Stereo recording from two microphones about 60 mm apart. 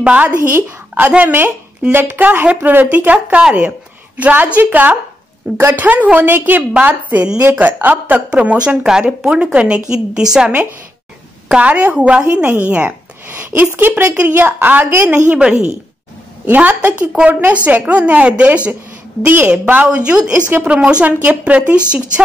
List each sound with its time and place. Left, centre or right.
0.0 s a woman's voice: right
0.5 s a woman's voice: right
15.3 s a woman's voice: centre
16.4 s a woman's voice: right
19.2 s a woman's voice: right